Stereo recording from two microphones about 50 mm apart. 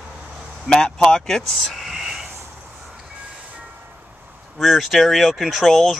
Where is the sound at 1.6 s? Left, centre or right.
Centre.